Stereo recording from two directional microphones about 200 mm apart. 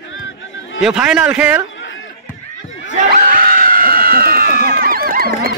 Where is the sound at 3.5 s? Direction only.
45° right (ahead or behind).